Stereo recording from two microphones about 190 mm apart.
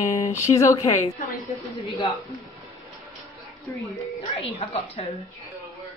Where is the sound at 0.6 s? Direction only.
15° left (ahead or behind).